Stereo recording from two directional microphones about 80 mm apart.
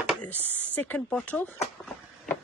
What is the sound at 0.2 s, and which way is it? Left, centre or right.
Speech, centre.